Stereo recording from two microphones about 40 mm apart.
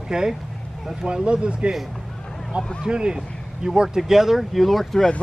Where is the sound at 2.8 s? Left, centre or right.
Right.